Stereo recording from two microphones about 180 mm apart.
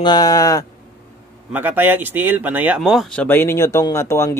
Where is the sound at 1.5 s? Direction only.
10° right (ahead or behind).